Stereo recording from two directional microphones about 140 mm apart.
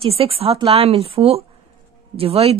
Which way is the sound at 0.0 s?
45° right (ahead or behind).